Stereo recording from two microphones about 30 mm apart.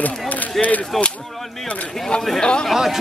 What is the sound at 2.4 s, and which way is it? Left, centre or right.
Speech, left.